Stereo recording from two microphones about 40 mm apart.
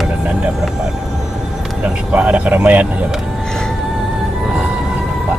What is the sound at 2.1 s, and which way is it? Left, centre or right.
Speech, right.